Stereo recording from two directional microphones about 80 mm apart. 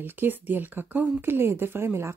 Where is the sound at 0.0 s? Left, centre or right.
Right.